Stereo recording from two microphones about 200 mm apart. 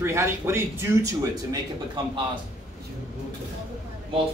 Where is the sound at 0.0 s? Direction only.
15° right (ahead or behind).